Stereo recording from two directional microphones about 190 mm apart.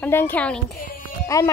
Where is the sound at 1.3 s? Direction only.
15° left (ahead or behind).